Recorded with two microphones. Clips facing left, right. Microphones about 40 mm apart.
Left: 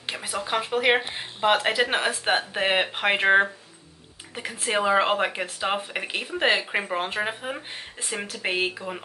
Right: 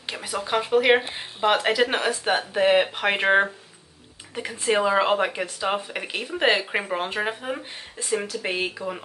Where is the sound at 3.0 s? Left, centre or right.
Centre.